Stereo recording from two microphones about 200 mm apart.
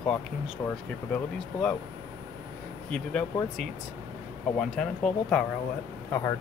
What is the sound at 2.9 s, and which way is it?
Speech, 5° left (ahead or behind).